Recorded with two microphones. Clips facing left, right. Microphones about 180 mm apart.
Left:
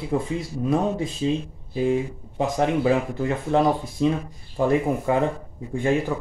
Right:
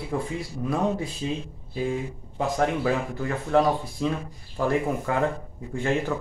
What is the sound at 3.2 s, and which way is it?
A man's voice, 20° left (ahead or behind).